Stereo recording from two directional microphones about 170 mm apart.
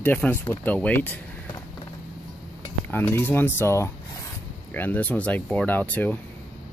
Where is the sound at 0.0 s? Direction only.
10° left (ahead or behind).